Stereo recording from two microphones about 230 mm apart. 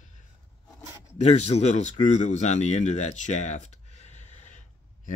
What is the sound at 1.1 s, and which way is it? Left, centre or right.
Speech, left.